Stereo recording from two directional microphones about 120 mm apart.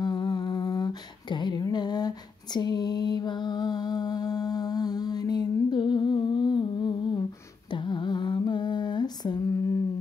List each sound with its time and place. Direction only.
0.0 s humming: 35° left (ahead or behind)
7.7 s mantra: 40° left (ahead or behind)